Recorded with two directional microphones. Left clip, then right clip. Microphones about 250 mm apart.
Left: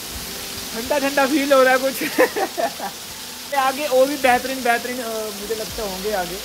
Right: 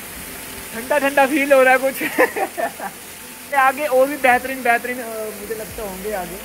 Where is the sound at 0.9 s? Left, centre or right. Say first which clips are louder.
Right 3 dB; centre.